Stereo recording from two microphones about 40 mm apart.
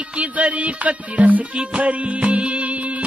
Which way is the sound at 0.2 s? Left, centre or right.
Right.